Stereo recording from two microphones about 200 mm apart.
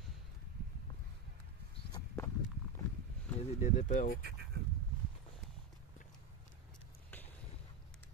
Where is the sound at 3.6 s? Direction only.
40° left (ahead or behind).